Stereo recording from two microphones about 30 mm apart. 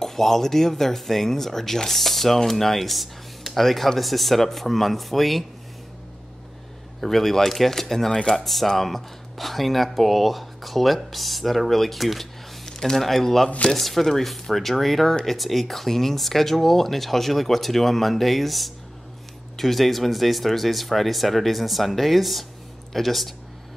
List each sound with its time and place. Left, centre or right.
0.0 s speech: centre
7.1 s speech: centre
8.1 s speech: left
8.5 s speech: centre
12.6 s speech: centre